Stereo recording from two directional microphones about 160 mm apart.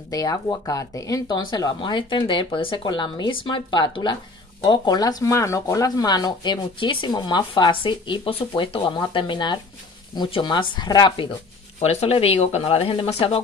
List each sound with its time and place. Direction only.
0.1 s speech: 20° left (ahead or behind)
11.8 s speech: 40° left (ahead or behind)